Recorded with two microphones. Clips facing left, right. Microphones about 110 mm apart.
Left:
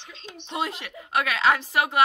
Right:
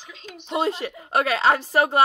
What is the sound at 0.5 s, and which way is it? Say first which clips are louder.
A woman's voice: right 6 dB; 30° right (ahead or behind).